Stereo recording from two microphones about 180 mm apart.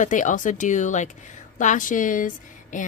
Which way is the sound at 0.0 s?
45° left (ahead or behind).